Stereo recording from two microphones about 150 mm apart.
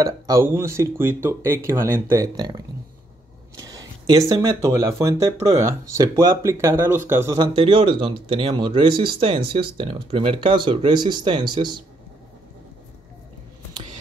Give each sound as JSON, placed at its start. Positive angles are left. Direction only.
{"t": 0.0, "sound": "speech", "side_deg": -20}
{"t": 3.5, "sound": "a sound", "side_deg": -25}
{"t": 4.3, "sound": "speech", "side_deg": -20}
{"t": 7.3, "sound": "speech", "side_deg": -35}